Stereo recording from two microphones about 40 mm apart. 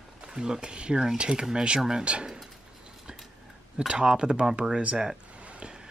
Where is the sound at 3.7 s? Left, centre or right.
Centre.